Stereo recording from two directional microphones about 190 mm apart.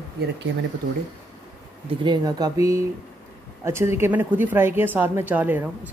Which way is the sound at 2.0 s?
20° right (ahead or behind).